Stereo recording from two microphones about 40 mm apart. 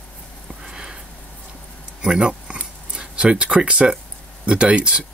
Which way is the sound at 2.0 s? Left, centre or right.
Right.